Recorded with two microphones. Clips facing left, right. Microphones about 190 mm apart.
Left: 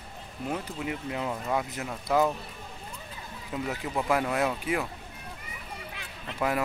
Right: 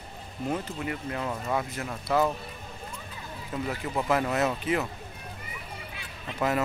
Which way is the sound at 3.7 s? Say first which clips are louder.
Right 1 dB; 5° left (ahead or behind).